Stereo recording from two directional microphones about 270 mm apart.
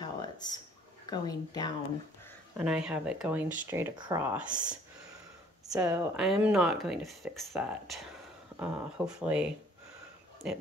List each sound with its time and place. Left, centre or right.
0.0 s a sound: centre
1.1 s speech: centre
2.5 s speech: centre